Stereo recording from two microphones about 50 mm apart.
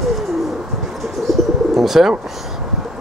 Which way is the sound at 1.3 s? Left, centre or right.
Centre.